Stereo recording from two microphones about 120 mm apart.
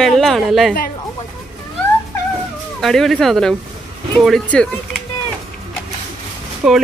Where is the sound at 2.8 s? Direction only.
5° left (ahead or behind).